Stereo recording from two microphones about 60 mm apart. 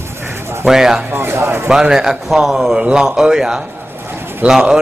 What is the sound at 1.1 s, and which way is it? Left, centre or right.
Speech, right.